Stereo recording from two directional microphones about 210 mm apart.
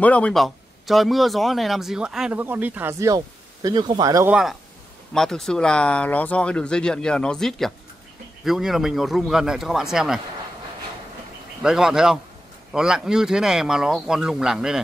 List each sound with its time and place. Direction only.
0.0 s speech: 5° left (ahead or behind); by 4.3 s 15° right (ahead or behind)
4.3 s speech: centre (ahead or behind)
11.6 s speech: 5° right (ahead or behind)